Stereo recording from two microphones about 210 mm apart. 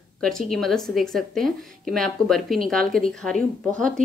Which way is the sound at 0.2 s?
Centre (ahead or behind).